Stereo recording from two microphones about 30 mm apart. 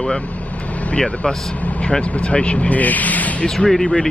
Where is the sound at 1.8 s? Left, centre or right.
Left.